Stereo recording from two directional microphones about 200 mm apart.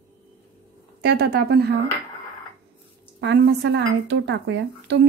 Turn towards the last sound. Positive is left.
turn(degrees=-65)  # may be behind; listen again after turning